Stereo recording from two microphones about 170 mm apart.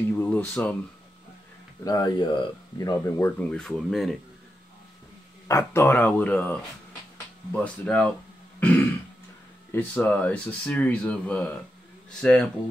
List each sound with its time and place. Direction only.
0.0 s a sound: 10° left (ahead or behind)
1.9 s speech: 25° left (ahead or behind); by 4.2 s centre (ahead or behind)
5.5 s speech: 15° left (ahead or behind)
8.5 s throat clearing: 10° left (ahead or behind)
9.7 s speech: 10° left (ahead or behind)